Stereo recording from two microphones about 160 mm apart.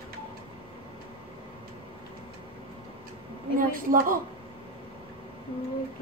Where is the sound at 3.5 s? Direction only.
60° right (ahead or behind).